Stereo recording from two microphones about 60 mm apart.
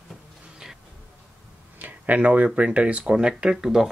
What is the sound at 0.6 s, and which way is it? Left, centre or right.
Insect, centre.